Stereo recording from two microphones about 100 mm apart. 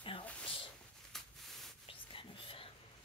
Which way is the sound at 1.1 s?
5° left (ahead or behind).